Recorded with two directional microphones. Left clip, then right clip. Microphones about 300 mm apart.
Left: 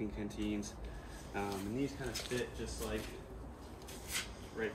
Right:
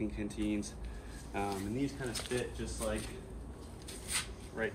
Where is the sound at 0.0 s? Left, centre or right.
Centre.